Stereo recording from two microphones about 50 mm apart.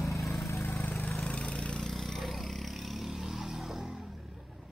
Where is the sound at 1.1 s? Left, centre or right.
Centre.